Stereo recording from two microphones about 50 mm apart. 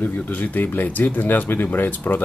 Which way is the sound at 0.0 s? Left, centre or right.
Left.